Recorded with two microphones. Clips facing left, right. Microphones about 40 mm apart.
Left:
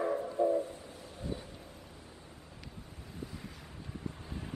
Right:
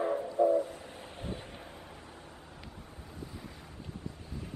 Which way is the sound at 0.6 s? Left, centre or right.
Right.